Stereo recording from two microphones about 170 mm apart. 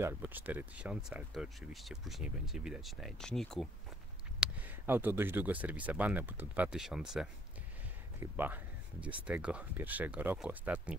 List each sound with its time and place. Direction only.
0.0 s speech: 10° right (ahead or behind); by 3.6 s 5° left (ahead or behind)
4.4 s speech: 10° right (ahead or behind)